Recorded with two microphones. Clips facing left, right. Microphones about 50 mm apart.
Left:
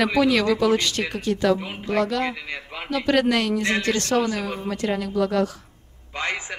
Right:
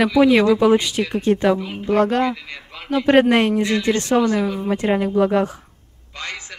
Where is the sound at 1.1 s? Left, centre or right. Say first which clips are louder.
Right 5 dB; right.